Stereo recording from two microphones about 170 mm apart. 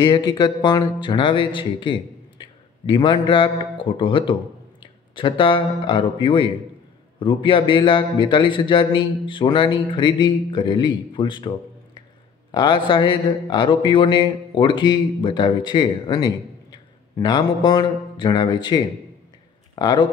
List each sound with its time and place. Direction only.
0.0 s a man's voice: 25° left (ahead or behind)